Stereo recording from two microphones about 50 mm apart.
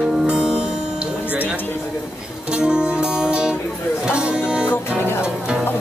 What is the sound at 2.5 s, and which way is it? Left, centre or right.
Music, centre.